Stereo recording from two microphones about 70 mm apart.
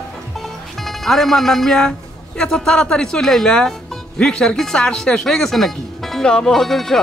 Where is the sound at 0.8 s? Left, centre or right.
Centre.